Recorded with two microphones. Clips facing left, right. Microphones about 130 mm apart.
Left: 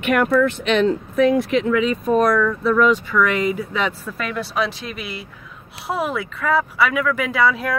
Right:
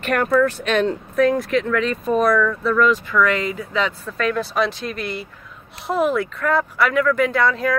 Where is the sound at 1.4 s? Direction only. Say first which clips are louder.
Left 2 dB; centre (ahead or behind).